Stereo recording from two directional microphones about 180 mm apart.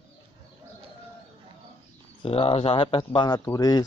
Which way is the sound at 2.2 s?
30° left (ahead or behind).